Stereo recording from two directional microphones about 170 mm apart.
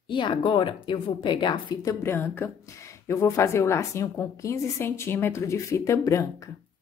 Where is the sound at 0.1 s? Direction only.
30° left (ahead or behind).